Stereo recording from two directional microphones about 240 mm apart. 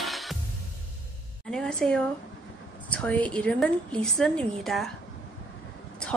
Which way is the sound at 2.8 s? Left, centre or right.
Centre.